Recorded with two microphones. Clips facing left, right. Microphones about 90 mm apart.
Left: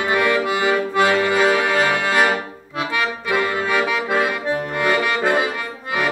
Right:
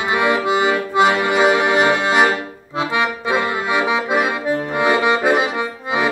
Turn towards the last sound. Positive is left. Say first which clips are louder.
# right 3 dB
turn(degrees=-20)  # may be behind; listen again after turning